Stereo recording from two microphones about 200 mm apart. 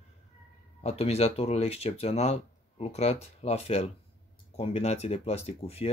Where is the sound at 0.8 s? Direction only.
30° left (ahead or behind).